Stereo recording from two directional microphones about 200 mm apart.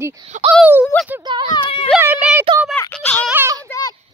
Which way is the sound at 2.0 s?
10° right (ahead or behind).